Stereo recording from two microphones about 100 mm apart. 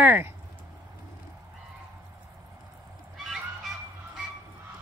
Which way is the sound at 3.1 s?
Centre (ahead or behind).